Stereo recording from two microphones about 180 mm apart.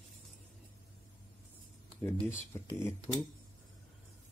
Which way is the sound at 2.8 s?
15° left (ahead or behind).